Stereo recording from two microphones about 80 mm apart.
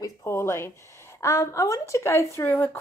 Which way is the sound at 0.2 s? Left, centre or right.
Left.